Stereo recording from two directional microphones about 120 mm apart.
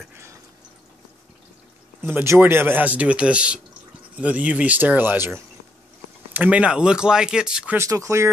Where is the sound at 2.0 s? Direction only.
20° right (ahead or behind).